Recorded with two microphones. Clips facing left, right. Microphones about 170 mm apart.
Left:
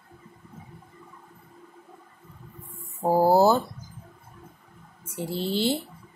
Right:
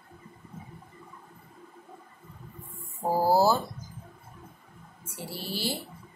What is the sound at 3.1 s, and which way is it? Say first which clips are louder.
Speech: left 4 dB; 20° left (ahead or behind).